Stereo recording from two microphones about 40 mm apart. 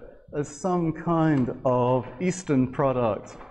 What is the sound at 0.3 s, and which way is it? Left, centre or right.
Speech, centre.